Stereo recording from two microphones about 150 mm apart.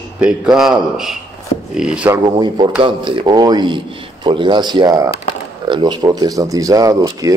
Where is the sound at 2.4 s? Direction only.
30° right (ahead or behind).